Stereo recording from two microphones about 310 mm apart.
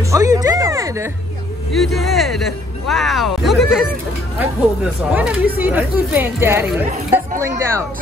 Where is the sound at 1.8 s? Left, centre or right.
Centre.